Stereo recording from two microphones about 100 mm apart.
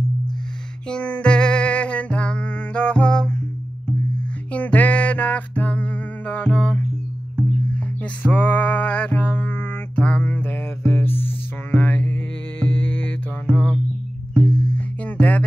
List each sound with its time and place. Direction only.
0.8 s music: 10° left (ahead or behind)
4.5 s music: 15° left (ahead or behind)